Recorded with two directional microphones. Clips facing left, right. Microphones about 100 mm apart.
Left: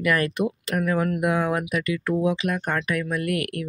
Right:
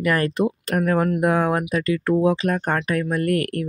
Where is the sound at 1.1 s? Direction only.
45° right (ahead or behind).